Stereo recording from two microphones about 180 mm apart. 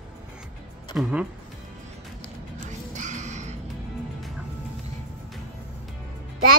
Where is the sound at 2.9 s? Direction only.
45° right (ahead or behind).